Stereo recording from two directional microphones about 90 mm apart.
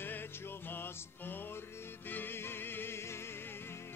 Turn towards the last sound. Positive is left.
turn(degrees=25)  # may be behind; listen again after turning